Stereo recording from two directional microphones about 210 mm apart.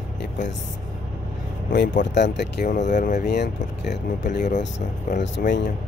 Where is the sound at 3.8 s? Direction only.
55° left (ahead or behind).